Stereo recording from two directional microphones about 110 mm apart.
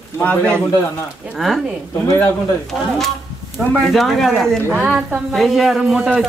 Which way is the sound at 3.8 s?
Centre (ahead or behind).